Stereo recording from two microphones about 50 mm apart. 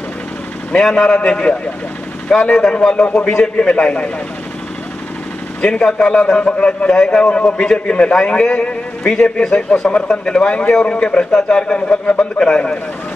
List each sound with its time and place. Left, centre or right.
0.7 s a man's voice: centre
5.6 s a man's voice: centre